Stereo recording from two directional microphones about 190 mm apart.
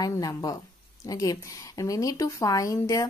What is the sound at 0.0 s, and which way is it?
A woman's voice, 20° left (ahead or behind).